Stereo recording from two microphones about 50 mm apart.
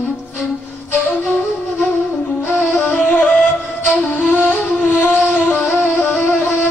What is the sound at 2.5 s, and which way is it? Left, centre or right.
Music, left.